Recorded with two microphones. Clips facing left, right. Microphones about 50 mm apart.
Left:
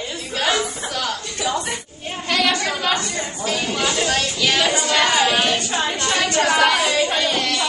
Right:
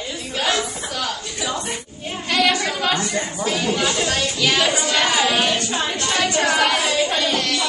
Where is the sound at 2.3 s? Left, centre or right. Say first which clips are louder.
Right 1 dB; centre.